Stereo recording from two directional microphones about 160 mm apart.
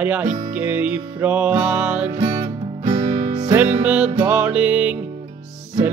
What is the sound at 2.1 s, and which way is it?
Music, 30° right (ahead or behind).